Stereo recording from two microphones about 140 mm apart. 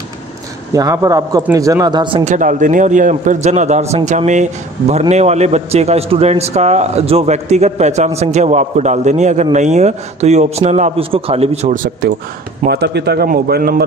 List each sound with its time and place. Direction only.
0.7 s speech: 25° right (ahead or behind)
2.2 s a man's voice: 65° right (ahead or behind); by 11.7 s 50° right (ahead or behind)
11.7 s speech: 80° right
12.6 s a man's voice: 55° right (ahead or behind)
13.2 s a man's voice: 90° right